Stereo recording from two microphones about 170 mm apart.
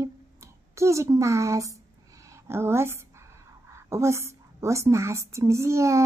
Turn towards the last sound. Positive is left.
turn(degrees=-15)  # may be behind; listen again after turning